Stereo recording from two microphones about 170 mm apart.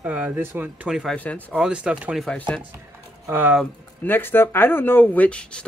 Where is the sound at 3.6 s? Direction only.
10° left (ahead or behind).